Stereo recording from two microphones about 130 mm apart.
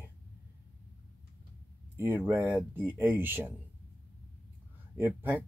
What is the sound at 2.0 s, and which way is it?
Speech, 15° right (ahead or behind).